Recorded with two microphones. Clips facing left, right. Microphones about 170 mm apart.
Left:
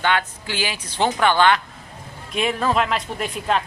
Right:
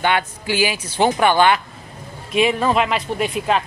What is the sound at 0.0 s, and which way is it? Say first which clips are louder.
Speech: right 2 dB; 10° right (ahead or behind).